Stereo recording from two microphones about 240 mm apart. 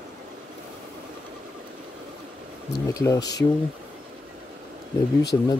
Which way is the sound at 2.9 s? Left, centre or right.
Centre.